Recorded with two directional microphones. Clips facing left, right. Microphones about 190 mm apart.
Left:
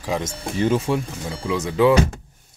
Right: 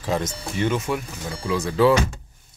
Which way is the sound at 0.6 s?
35° left (ahead or behind).